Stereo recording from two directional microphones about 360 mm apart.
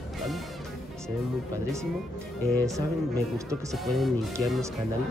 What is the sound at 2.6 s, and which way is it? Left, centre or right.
Speech, centre.